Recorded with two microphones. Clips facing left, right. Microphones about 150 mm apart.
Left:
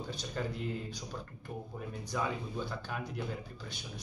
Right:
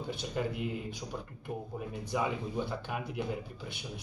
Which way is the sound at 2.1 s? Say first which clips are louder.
Right 3 dB; 15° right (ahead or behind).